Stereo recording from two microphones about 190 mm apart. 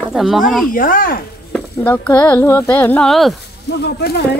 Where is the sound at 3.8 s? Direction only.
60° left (ahead or behind).